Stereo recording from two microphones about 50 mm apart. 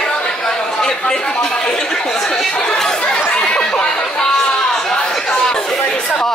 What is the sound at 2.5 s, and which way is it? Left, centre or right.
Chatter, centre.